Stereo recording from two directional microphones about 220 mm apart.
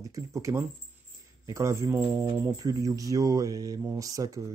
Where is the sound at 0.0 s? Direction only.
15° right (ahead or behind).